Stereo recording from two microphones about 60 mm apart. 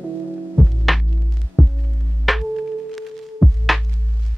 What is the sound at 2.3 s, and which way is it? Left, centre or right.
Tuning fork, centre.